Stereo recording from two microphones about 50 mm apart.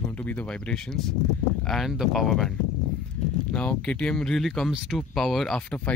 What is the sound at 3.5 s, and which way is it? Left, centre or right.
Speech, left.